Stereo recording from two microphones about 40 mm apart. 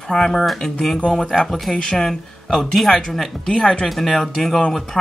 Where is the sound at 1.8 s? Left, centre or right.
Centre.